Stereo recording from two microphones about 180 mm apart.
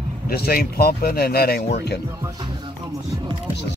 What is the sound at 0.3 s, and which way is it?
Speech, 55° left (ahead or behind).